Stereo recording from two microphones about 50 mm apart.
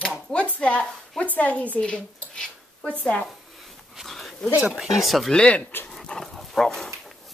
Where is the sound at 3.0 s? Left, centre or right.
Left.